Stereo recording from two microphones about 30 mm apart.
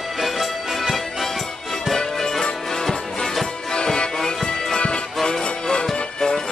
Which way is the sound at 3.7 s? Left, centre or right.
Left.